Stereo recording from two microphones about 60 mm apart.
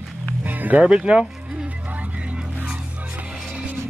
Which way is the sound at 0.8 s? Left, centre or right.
Centre.